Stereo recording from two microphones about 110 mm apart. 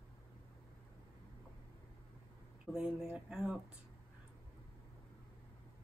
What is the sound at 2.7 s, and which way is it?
Speech, 5° right (ahead or behind).